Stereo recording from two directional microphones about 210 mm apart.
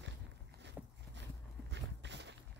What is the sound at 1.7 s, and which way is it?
Walk, 55° right (ahead or behind).